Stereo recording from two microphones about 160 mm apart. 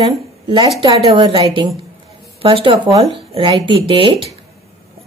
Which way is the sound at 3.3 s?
35° right (ahead or behind).